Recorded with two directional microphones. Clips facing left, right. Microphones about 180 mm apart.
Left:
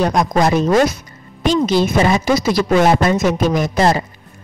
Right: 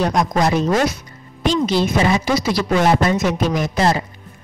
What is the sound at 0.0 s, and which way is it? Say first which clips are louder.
A woman's voice: left 2 dB; 50° left (ahead or behind).